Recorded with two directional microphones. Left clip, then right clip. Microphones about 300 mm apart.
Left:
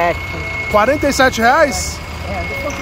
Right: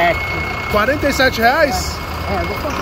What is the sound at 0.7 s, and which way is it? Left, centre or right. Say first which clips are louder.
Speech: left 3 dB; centre.